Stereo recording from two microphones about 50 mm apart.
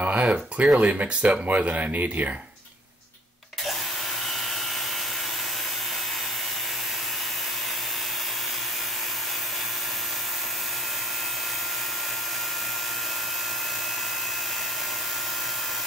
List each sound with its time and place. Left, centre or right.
0.0 s speech: right